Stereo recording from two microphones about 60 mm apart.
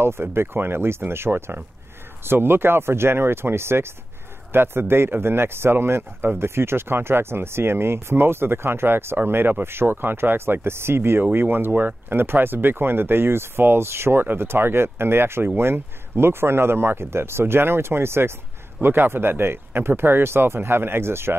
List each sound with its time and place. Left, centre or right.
0.0 s speech: right